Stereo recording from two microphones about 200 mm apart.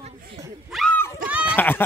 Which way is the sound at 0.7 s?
5° left (ahead or behind).